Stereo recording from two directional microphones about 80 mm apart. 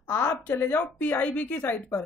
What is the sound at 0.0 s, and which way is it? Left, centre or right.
Speech, left.